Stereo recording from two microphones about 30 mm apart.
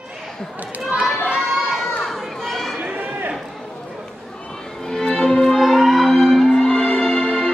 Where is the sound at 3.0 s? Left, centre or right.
Right.